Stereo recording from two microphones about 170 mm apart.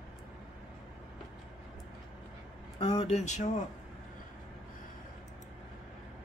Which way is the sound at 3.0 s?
40° left (ahead or behind).